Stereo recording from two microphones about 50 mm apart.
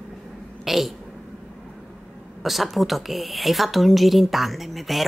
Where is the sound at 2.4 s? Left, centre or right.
Centre.